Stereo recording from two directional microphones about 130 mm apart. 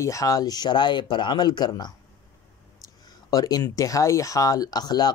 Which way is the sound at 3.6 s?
25° left (ahead or behind).